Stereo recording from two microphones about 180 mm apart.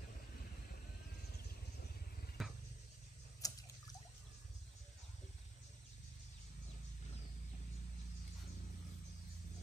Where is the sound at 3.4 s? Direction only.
20° left (ahead or behind).